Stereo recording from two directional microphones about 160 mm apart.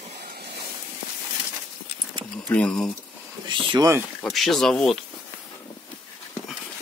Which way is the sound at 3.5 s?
30° right (ahead or behind).